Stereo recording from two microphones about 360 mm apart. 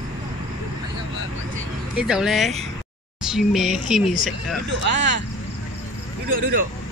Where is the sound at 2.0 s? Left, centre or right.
Centre.